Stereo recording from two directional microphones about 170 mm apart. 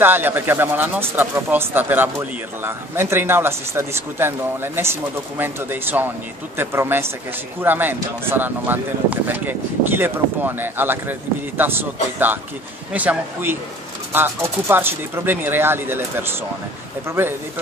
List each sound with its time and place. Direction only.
0.0 s speech: 10° right (ahead or behind)